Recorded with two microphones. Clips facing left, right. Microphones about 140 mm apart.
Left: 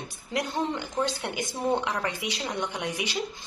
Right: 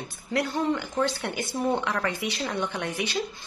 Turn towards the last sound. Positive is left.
turn(degrees=15)  # may be behind; listen again after turning